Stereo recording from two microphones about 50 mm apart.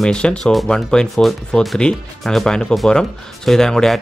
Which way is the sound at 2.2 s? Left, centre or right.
Centre.